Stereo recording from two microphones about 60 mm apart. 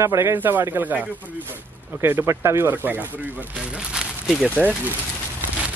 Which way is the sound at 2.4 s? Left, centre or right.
Right.